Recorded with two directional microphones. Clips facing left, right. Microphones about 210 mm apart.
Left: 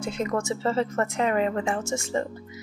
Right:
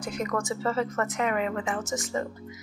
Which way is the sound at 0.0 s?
25° left (ahead or behind).